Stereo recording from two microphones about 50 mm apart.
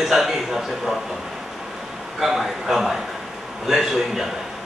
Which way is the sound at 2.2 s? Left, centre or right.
Centre.